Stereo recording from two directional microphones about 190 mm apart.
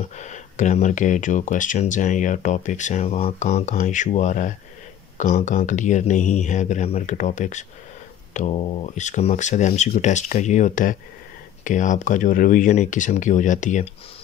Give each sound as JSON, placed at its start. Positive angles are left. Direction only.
{"t": 0.2, "sound": "speech", "side_deg": 40}